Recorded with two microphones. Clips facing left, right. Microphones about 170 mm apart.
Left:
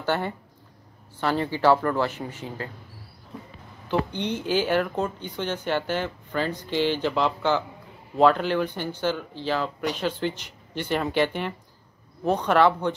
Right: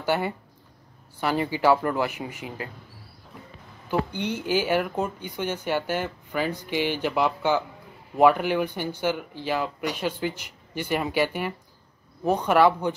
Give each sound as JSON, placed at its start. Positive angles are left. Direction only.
{"t": 0.0, "sound": "speech", "side_deg": -10}
{"t": 4.1, "sound": "speech", "side_deg": -10}